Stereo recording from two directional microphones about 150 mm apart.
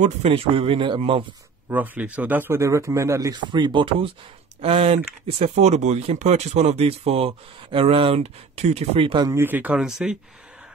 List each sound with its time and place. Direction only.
0.0 s speech: 40° right (ahead or behind)
1.7 s speech: 10° right (ahead or behind); by 9.3 s 35° right (ahead or behind)
9.3 s speech: 15° right (ahead or behind)